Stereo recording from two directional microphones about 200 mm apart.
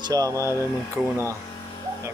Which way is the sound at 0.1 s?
15° right (ahead or behind).